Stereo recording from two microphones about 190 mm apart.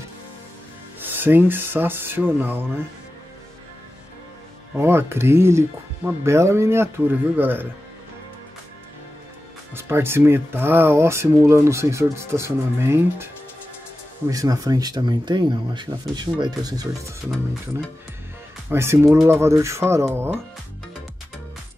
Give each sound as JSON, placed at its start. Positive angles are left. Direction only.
{"t": 1.0, "sound": "speech", "side_deg": -10}
{"t": 4.7, "sound": "speech", "side_deg": -10}
{"t": 9.8, "sound": "speech", "side_deg": -10}
{"t": 18.7, "sound": "speech", "side_deg": -15}